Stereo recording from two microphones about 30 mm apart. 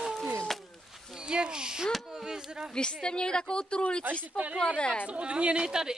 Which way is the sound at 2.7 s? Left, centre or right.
Left.